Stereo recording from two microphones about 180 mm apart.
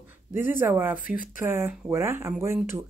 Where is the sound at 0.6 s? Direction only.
10° right (ahead or behind).